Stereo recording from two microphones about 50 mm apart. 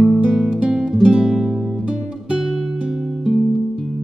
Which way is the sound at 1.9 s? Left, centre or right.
Centre.